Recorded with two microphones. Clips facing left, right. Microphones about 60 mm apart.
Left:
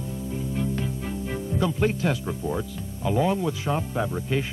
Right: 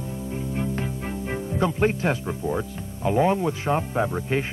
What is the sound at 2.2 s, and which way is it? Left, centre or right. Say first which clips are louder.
Speech: right 2 dB; centre.